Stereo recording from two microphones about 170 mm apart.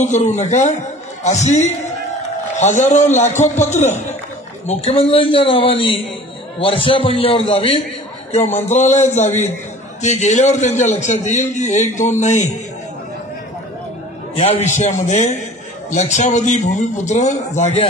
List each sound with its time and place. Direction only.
0.0 s a man's voice: 45° left (ahead or behind)
8.7 s a man's voice: 45° left (ahead or behind)
14.4 s a man's voice: 40° left (ahead or behind)